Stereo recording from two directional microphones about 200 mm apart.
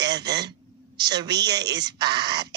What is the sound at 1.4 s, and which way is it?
Speech, 20° right (ahead or behind).